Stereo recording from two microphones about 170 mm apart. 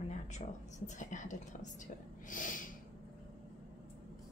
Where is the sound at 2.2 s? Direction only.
50° left (ahead or behind).